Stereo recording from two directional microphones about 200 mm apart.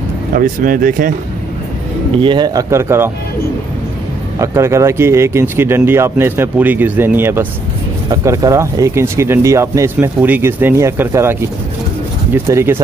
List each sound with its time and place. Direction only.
0.3 s speech: 45° right (ahead or behind)
2.2 s speech: 20° right (ahead or behind)
4.4 s speech: 15° right (ahead or behind)
12.4 s speech: 10° right (ahead or behind)